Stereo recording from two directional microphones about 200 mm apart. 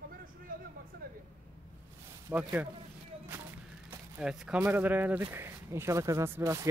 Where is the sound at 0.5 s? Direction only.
45° right (ahead or behind).